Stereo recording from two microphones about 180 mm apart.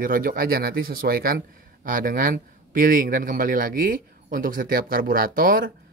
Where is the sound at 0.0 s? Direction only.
50° right (ahead or behind).